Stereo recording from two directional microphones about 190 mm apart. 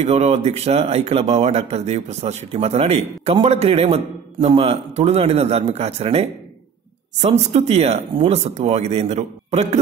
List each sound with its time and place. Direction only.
0.0 s speech: 35° right (ahead or behind)